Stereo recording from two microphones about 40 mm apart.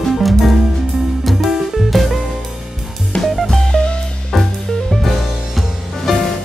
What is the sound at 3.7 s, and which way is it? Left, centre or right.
Music, left.